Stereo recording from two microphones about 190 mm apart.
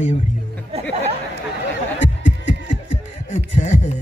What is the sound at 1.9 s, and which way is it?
Snicker, 75° left (ahead or behind).